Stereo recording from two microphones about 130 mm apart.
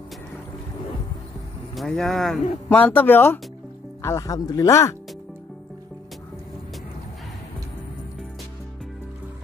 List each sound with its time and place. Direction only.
1.8 s speech: centre (ahead or behind)
2.7 s speech: 10° left (ahead or behind)